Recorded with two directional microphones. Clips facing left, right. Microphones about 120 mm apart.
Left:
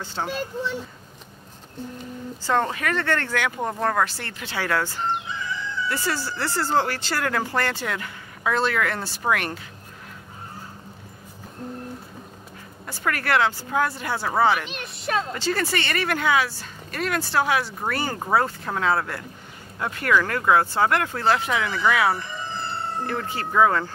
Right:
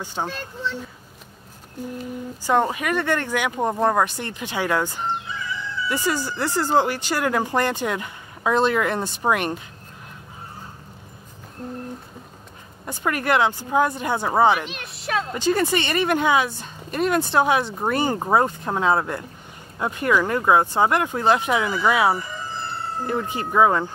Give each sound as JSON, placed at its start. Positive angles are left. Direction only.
{"t": 0.0, "sound": "speech", "side_deg": -15}
{"t": 0.3, "sound": "speech", "side_deg": 15}
{"t": 2.4, "sound": "speech", "side_deg": -15}
{"t": 12.8, "sound": "speech", "side_deg": -20}
{"t": 14.6, "sound": "speech", "side_deg": 0}
{"t": 15.3, "sound": "speech", "side_deg": -20}